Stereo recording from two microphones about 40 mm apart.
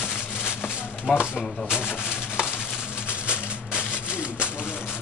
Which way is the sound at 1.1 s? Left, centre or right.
Centre.